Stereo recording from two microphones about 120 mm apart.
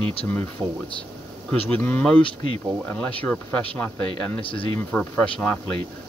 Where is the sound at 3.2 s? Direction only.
10° left (ahead or behind).